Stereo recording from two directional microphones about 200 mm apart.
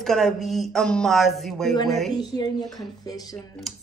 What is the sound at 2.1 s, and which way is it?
Speech, 20° left (ahead or behind).